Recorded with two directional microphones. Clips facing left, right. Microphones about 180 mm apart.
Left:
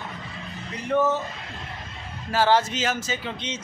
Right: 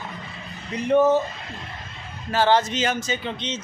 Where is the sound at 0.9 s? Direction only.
15° right (ahead or behind).